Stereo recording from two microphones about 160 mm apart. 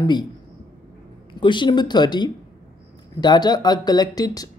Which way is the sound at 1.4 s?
30° left (ahead or behind).